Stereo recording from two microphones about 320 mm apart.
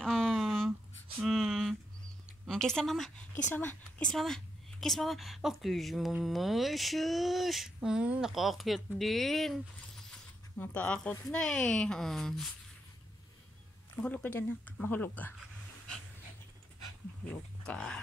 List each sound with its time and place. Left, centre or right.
0.0 s a sound: centre
2.4 s a woman's voice: centre
10.6 s a woman's voice: centre
14.0 s a woman's voice: centre
17.6 s a woman's voice: centre